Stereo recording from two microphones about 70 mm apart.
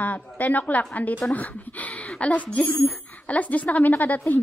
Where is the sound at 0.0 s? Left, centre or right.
Left.